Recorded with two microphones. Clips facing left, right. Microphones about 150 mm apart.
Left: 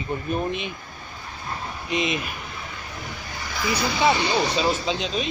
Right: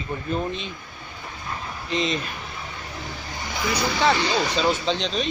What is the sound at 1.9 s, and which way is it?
Speech, 10° left (ahead or behind).